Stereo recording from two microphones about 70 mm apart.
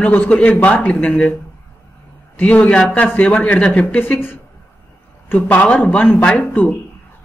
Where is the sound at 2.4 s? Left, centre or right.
Left.